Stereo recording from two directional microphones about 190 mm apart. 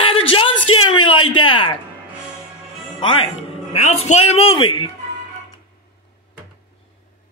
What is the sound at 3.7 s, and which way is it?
Speech, 35° left (ahead or behind).